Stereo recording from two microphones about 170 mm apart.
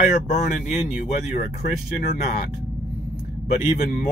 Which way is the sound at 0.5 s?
60° left (ahead or behind).